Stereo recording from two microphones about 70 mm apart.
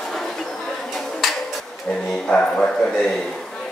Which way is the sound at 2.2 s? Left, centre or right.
Centre.